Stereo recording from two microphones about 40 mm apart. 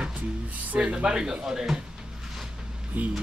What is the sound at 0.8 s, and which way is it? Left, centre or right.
Speech, right.